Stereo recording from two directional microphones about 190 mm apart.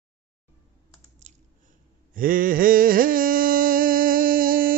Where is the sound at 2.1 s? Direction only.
45° right (ahead or behind).